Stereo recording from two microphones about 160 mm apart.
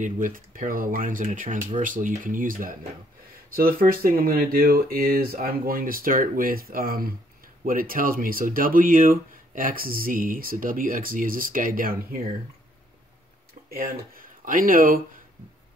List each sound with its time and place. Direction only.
0.0 s speech: 55° right (ahead or behind)
13.7 s speech: 65° right (ahead or behind)